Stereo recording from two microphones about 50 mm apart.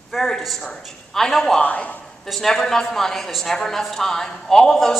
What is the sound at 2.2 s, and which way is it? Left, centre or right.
Speech, centre.